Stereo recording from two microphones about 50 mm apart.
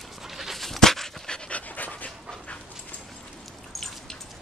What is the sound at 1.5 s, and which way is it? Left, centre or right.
Dog, left.